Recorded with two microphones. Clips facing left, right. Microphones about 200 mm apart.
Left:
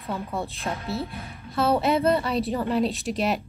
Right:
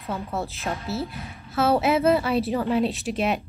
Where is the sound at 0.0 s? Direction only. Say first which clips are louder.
Right 1 dB; centre (ahead or behind).